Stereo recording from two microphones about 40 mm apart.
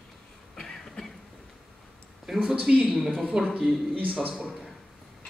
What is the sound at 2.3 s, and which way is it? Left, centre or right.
Speech, centre.